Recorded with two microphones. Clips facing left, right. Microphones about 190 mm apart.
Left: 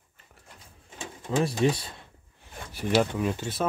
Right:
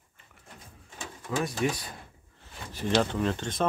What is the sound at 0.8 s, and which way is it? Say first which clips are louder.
Bird: left 2 dB; 25° left (ahead or behind).